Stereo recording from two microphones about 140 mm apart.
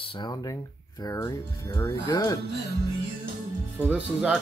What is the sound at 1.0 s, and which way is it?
Speech, 20° left (ahead or behind).